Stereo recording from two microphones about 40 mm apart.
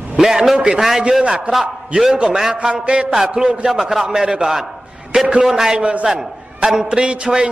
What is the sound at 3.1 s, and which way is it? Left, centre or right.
Speech, centre.